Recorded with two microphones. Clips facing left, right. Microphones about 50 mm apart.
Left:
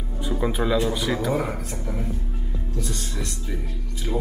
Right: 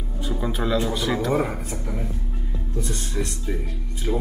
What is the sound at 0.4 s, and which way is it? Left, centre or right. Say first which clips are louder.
Speech: left 1 dB; centre.